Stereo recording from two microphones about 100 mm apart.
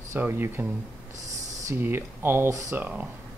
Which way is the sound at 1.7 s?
25° right (ahead or behind).